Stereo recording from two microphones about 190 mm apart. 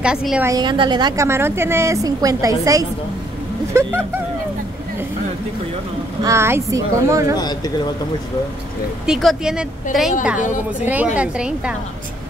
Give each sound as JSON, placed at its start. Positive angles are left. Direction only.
{"t": 0.0, "sound": "a woman's voice", "side_deg": -5}
{"t": 0.5, "sound": "a woman's voice", "side_deg": -25}
{"t": 6.2, "sound": "a woman's voice", "side_deg": -15}
{"t": 7.3, "sound": "speech", "side_deg": 20}
{"t": 9.0, "sound": "a woman's voice", "side_deg": 0}
{"t": 10.4, "sound": "a woman's voice", "side_deg": 40}
{"t": 10.9, "sound": "a woman's voice", "side_deg": -5}